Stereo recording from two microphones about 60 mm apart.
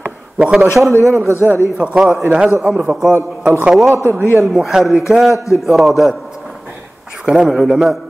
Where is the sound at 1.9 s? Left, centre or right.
Centre.